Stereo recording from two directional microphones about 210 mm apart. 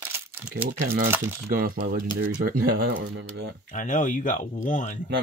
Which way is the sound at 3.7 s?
40° left (ahead or behind).